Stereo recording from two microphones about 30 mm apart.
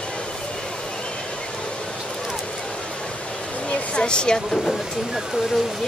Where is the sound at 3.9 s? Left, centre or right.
Left.